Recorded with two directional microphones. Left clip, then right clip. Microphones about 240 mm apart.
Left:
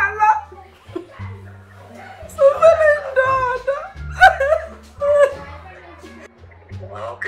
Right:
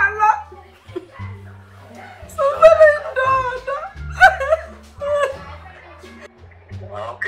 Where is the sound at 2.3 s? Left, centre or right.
Centre.